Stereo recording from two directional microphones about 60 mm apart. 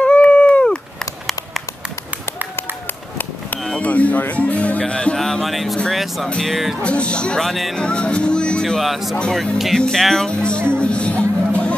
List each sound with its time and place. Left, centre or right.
0.0 s a sound: centre
3.7 s music: left; by 5.8 s centre
5.9 s speech: centre
6.4 s music: centre
6.8 s speech: centre
7.4 s music: centre
7.7 s speech: centre
8.7 s music: centre
9.8 s speech: centre
10.7 s music: centre